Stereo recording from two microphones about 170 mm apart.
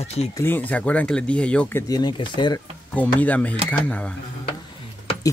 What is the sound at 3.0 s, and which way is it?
Speech, 10° left (ahead or behind).